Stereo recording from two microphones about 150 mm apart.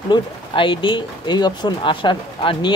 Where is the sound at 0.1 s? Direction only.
35° left (ahead or behind).